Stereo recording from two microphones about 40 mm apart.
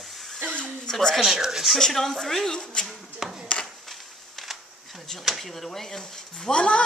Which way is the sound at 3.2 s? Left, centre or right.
Centre.